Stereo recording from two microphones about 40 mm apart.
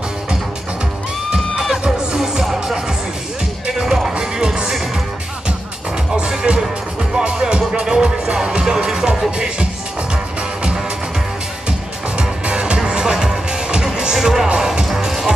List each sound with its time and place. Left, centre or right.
1.6 s music: centre
2.0 s music: centre
2.4 s music: centre
3.6 s music: centre
6.1 s music: right
12.2 s music: right
14.1 s music: centre